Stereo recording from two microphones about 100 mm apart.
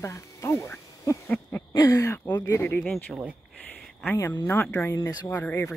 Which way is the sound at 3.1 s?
10° left (ahead or behind).